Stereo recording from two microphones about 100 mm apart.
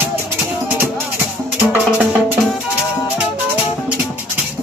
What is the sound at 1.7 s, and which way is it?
Music, 15° right (ahead or behind).